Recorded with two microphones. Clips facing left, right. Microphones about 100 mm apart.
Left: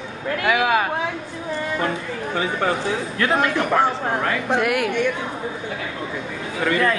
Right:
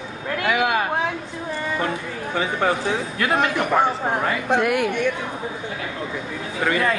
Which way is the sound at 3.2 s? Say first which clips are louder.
Left 1 dB; 10° right (ahead or behind).